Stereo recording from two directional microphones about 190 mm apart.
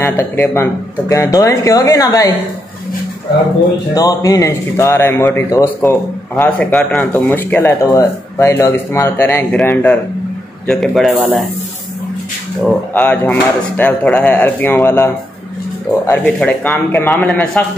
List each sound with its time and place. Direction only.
0.0 s a man's voice: 15° left (ahead or behind)
3.9 s a man's voice: 20° left (ahead or behind); by 11.1 s centre (ahead or behind)
12.9 s a man's voice: 10° left (ahead or behind)